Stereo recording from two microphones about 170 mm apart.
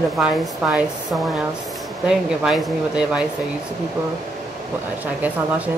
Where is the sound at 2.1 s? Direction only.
5° right (ahead or behind).